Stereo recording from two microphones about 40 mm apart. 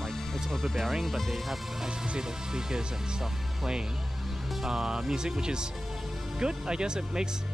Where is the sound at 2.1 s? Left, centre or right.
Centre.